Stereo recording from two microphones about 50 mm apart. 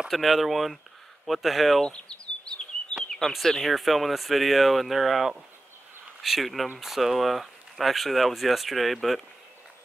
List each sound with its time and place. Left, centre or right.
0.1 s speech: centre
1.9 s bird: centre
3.2 s speech: centre